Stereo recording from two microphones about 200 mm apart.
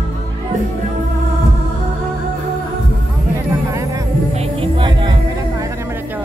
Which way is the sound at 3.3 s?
15° right (ahead or behind).